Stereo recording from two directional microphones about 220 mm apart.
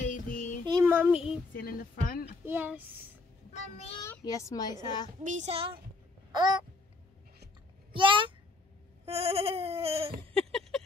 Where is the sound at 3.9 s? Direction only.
15° left (ahead or behind).